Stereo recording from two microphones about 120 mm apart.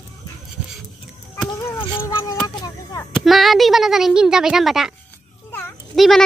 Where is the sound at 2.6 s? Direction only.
30° left (ahead or behind).